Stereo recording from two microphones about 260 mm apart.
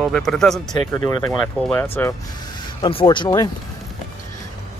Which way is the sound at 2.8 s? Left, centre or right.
Centre.